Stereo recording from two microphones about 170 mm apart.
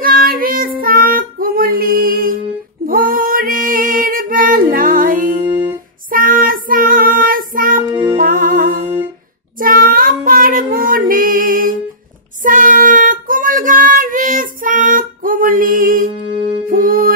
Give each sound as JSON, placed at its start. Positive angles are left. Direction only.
{"t": 0.0, "sound": "child singing", "side_deg": -60}
{"t": 2.9, "sound": "female singing", "side_deg": -55}
{"t": 6.0, "sound": "child singing", "side_deg": -55}
{"t": 7.8, "sound": "music", "side_deg": -15}
{"t": 8.2, "sound": "music", "side_deg": -55}
{"t": 8.8, "sound": "music", "side_deg": -15}
{"t": 9.6, "sound": "child singing", "side_deg": -55}
{"t": 16.6, "sound": "music", "side_deg": -55}